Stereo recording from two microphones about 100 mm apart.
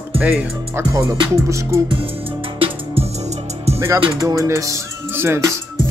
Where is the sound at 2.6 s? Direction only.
65° right (ahead or behind).